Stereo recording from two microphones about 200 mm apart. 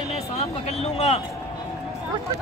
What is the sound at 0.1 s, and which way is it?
Speech, 30° left (ahead or behind).